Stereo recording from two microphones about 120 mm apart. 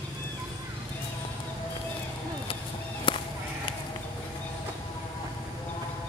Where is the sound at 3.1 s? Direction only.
40° left (ahead or behind).